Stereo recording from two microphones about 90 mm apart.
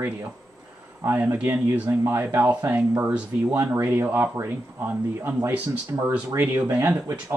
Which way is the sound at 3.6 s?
30° right (ahead or behind).